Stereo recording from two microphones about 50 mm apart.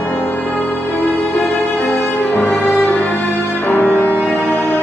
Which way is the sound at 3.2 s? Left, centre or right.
Left.